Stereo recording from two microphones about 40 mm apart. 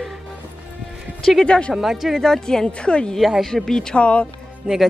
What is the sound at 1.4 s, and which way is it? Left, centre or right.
Speech, left.